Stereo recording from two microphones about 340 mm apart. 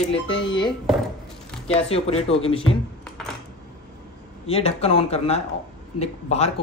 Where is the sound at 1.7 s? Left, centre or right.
Centre.